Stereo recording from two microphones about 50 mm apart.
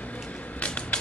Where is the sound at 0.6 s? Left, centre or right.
Left.